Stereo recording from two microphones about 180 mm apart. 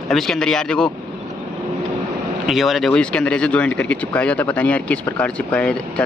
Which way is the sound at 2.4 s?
Centre (ahead or behind).